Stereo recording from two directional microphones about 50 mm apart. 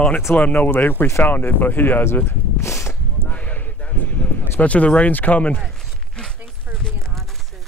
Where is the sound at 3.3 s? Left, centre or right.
Left.